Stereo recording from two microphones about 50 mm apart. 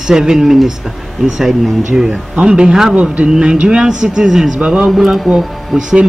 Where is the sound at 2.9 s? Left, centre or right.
Right; by 4.5 s centre.